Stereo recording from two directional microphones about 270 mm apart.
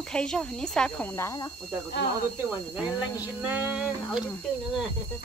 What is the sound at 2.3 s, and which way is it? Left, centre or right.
Speech, centre.